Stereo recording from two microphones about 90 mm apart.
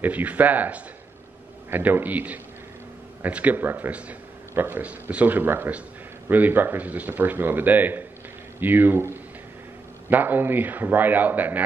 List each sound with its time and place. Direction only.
0.0 s speech: 20° right (ahead or behind)